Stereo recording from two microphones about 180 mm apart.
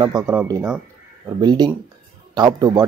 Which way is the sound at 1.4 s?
25° right (ahead or behind).